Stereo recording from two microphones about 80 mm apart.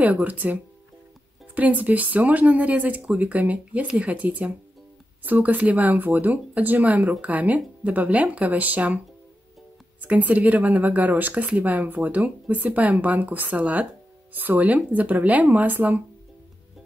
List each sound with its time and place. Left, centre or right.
0.0 s speech: centre
10.0 s speech: centre